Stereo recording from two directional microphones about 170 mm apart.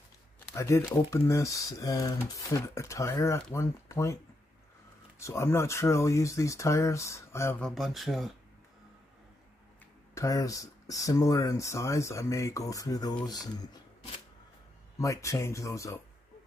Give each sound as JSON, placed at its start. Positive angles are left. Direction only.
{"t": 0.6, "sound": "speech", "side_deg": 15}
{"t": 5.2, "sound": "speech", "side_deg": 15}
{"t": 7.6, "sound": "speech", "side_deg": 0}
{"t": 10.1, "sound": "speech", "side_deg": 20}
{"t": 15.0, "sound": "speech", "side_deg": 20}